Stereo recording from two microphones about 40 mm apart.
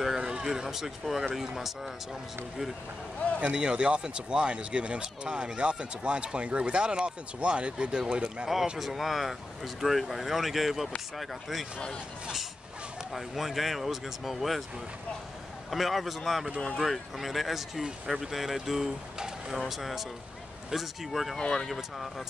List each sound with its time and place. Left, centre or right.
0.0 s a sound: centre
0.3 s speech: centre
3.5 s speech: right
8.7 s speech: centre
13.1 s speech: centre
15.7 s speech: centre
21.4 s speech: centre
21.6 s speech: centre